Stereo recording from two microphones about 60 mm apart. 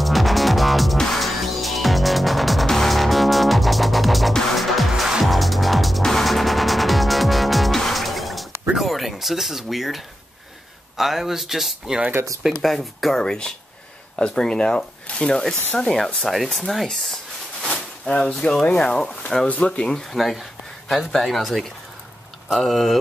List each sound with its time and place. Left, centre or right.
0.0 s music: centre
8.7 s a sound: centre
11.0 s speech: centre
15.5 s speech: left
15.8 s speech: centre
16.4 s a sound: centre
18.0 s speech: centre